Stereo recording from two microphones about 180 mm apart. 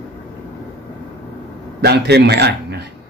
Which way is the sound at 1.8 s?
65° right (ahead or behind).